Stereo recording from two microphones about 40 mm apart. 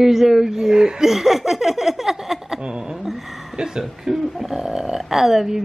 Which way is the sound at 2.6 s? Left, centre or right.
Centre.